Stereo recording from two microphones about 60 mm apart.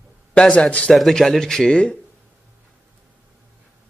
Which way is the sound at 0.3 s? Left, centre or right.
Left.